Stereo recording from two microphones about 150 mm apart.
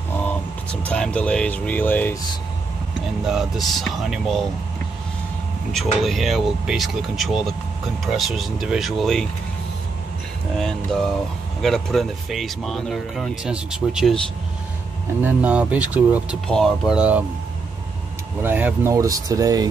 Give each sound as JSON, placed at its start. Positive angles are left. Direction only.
{"t": 0.1, "sound": "vehicle", "side_deg": 10}
{"t": 0.8, "sound": "speech", "side_deg": 5}
{"t": 3.3, "sound": "speech", "side_deg": 0}
{"t": 5.7, "sound": "speech", "side_deg": 0}
{"t": 10.6, "sound": "speech", "side_deg": 5}
{"t": 15.2, "sound": "speech", "side_deg": -10}
{"t": 16.4, "sound": "speech", "side_deg": 0}
{"t": 18.4, "sound": "speech", "side_deg": -10}
{"t": 18.9, "sound": "speech", "side_deg": -25}